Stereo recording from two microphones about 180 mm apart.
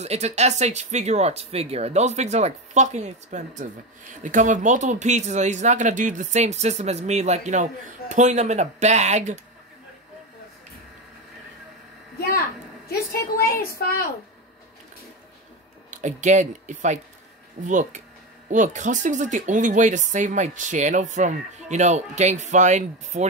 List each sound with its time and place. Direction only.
0.0 s speech: 40° right (ahead or behind)
13.7 s a child's voice: 55° left (ahead or behind)
15.9 s speech: 40° right (ahead or behind)